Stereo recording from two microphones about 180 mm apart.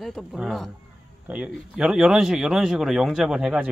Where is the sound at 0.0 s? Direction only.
Centre (ahead or behind).